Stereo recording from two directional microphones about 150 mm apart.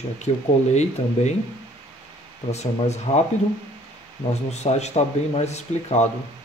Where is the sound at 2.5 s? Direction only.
50° left (ahead or behind).